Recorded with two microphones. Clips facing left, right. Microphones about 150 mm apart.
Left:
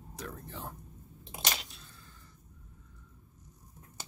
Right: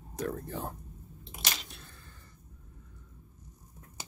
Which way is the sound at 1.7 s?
60° right (ahead or behind).